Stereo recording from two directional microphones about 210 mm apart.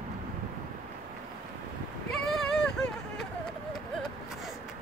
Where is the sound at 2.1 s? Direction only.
Centre (ahead or behind).